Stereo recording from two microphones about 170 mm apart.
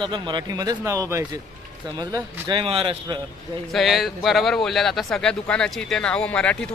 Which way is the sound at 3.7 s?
Centre (ahead or behind).